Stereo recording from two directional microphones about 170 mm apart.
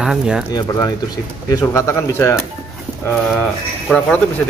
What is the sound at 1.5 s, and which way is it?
Speech, 20° left (ahead or behind).